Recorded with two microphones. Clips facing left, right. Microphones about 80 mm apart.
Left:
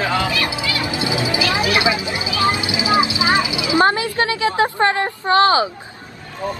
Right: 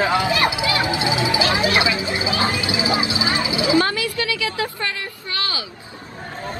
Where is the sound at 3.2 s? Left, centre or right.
Left.